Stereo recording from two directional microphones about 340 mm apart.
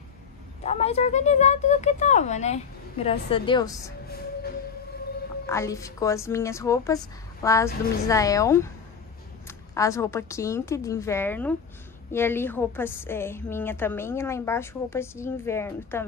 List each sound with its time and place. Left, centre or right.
0.7 s speech: centre
5.5 s a woman's voice: centre